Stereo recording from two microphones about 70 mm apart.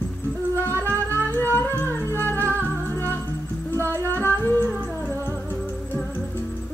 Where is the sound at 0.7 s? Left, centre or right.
Left.